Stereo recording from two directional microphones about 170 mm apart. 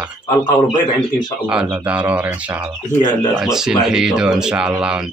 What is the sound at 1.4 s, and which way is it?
Speech, 5° right (ahead or behind).